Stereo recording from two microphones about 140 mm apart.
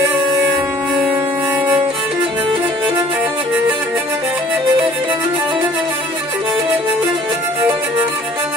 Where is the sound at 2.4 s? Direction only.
35° right (ahead or behind).